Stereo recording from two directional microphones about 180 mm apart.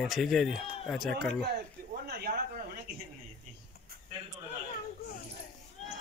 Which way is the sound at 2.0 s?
60° right (ahead or behind).